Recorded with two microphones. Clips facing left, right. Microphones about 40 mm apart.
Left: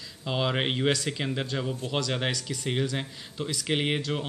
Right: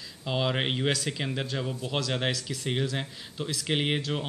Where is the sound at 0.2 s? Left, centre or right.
Centre.